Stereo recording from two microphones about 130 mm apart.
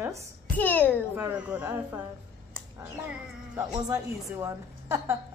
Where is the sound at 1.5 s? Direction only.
15° right (ahead or behind).